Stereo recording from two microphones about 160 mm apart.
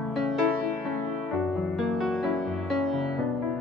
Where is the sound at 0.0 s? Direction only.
Centre (ahead or behind).